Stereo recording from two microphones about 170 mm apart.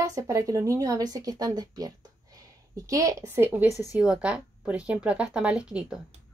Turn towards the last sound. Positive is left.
turn(degrees=-5)  # may be behind; listen again after turning